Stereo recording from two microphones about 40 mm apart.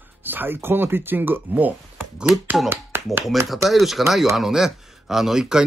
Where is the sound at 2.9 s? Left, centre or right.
Right.